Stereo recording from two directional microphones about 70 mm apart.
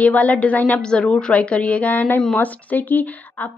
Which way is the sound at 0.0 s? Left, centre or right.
Left.